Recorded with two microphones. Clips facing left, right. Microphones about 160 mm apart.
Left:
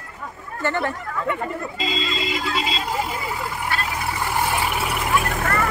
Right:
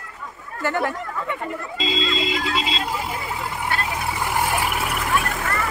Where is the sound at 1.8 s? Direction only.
20° right (ahead or behind).